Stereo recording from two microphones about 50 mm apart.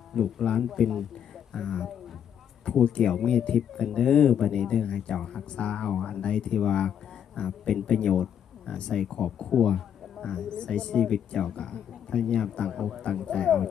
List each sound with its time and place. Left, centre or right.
0.1 s speech: centre
1.5 s speech: centre
3.0 s speech: centre